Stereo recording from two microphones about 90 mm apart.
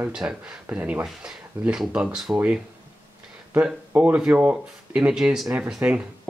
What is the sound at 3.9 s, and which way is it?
Speech, 15° right (ahead or behind).